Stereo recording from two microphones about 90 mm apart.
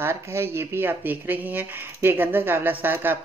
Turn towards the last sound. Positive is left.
turn(degrees=-20)  # may be behind; listen again after turning